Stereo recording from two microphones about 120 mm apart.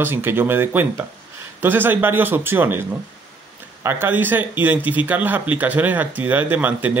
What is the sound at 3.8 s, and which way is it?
Speech, 15° right (ahead or behind).